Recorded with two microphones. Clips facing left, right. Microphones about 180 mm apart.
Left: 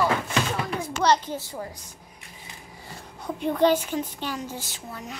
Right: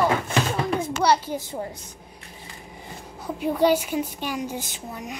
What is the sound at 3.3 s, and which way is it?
A woman's voice, 5° right (ahead or behind).